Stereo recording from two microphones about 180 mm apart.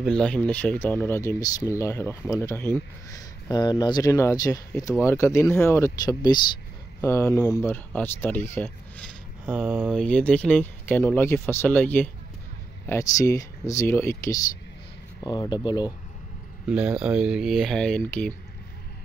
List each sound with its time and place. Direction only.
0.0 s speech: 5° left (ahead or behind)
9.5 s speech: 10° right (ahead or behind)
9.9 s speech: 5° left (ahead or behind); by 15.9 s 25° left (ahead or behind)
16.6 s speech: 5° right (ahead or behind)